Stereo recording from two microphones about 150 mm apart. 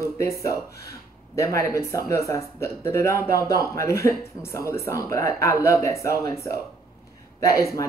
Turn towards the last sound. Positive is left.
turn(degrees=20)  # may be behind; listen again after turning